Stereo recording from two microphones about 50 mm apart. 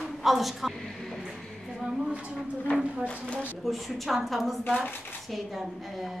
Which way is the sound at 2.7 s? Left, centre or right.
Left.